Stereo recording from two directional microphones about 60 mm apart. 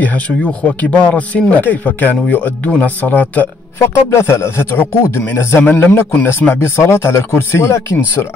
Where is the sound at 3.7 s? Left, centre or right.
Left.